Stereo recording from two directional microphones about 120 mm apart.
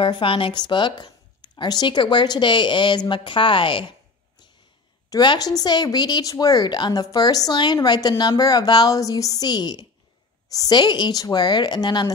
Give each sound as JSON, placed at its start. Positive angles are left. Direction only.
{"t": 0.0, "sound": "speech", "side_deg": 45}
{"t": 5.1, "sound": "speech", "side_deg": 35}